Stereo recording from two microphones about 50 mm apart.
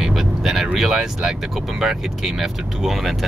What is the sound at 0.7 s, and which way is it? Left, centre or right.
Speech, centre.